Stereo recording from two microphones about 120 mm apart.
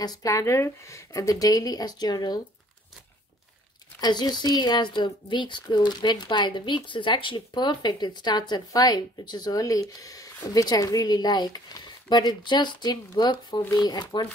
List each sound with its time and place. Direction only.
0.0 s a woman's voice: 30° left (ahead or behind)
4.0 s a woman's voice: 35° left (ahead or behind)